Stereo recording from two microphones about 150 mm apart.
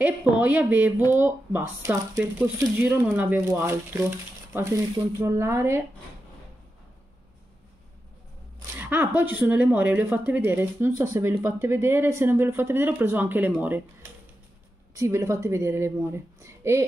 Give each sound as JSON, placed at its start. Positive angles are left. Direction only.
{"t": 0.0, "sound": "a woman's voice", "side_deg": -10}
{"t": 8.7, "sound": "a woman's voice", "side_deg": -15}
{"t": 15.0, "sound": "a woman's voice", "side_deg": -20}